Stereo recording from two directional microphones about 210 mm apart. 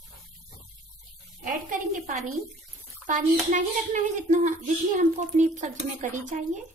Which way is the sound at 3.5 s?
35° right (ahead or behind).